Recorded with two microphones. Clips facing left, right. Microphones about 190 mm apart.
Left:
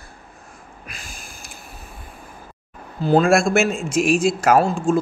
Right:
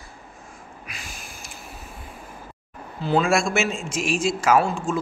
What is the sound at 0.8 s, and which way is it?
Snort, 50° left (ahead or behind).